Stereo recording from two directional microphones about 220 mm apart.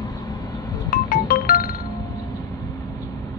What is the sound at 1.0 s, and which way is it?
Music, 40° left (ahead or behind).